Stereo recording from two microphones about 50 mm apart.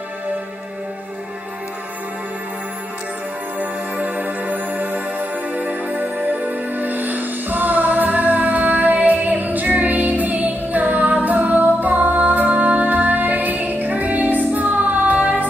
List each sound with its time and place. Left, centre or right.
3.5 s music: right